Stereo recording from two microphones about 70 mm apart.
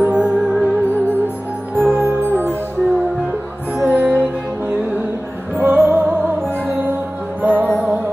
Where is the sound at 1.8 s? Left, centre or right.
Right.